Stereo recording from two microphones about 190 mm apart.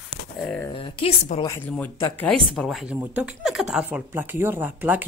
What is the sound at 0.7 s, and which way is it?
Speech, 30° left (ahead or behind).